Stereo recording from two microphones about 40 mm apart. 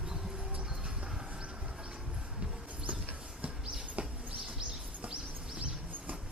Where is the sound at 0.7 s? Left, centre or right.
Right.